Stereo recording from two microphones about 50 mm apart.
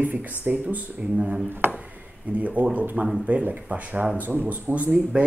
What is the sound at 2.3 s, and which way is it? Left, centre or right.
Speech, right.